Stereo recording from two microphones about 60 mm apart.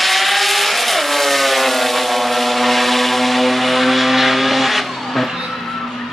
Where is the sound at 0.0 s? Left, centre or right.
Centre.